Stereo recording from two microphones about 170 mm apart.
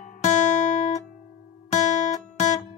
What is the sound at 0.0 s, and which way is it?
Music, 45° left (ahead or behind).